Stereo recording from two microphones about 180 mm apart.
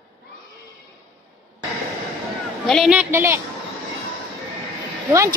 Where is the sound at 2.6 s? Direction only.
Centre (ahead or behind).